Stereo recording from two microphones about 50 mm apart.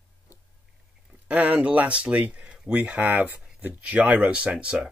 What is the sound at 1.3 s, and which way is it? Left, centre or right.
Speech, right.